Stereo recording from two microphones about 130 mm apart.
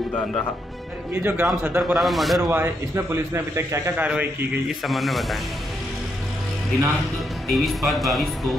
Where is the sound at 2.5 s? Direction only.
20° right (ahead or behind).